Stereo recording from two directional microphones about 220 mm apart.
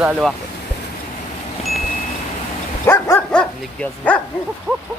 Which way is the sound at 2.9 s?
10° left (ahead or behind).